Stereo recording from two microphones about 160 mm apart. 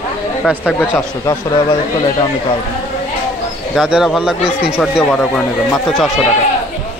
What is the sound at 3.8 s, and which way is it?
Speech, 5° right (ahead or behind).